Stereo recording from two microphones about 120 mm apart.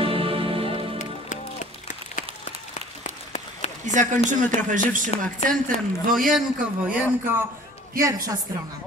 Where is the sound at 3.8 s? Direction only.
90° right.